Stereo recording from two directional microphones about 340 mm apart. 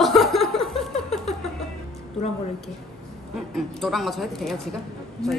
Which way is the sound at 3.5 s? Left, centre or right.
Centre.